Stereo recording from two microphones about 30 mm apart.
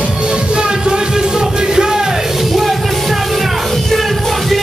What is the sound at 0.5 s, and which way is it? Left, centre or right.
Music, right.